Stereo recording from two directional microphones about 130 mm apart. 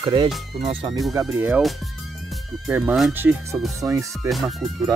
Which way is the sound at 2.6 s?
5° right (ahead or behind).